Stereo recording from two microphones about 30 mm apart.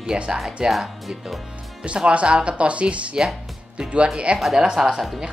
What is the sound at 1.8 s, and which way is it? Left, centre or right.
Speech, right.